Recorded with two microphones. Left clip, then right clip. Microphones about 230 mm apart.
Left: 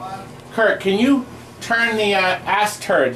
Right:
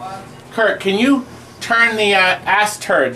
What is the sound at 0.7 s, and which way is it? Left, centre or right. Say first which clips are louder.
Speech: right 2 dB; centre.